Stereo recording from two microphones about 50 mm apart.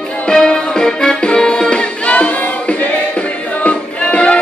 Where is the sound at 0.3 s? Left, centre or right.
Centre.